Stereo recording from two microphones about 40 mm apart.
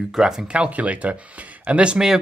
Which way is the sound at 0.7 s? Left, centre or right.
Right.